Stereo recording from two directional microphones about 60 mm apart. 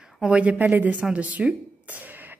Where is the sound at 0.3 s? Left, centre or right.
Right.